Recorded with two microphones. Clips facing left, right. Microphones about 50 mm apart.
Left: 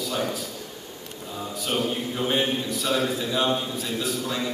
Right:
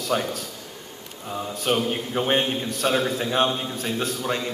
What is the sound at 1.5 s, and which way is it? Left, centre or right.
A man's voice, right.